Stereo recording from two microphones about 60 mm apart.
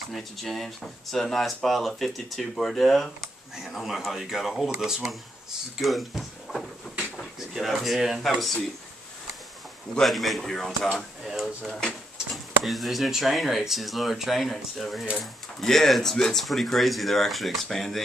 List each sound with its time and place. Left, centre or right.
0.1 s speech: centre
9.9 s speech: centre